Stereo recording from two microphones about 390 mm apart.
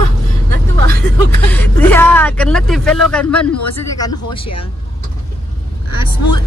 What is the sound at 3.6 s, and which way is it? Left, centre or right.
Speech, left.